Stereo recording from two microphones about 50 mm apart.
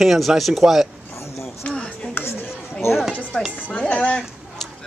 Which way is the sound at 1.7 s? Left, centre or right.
Left.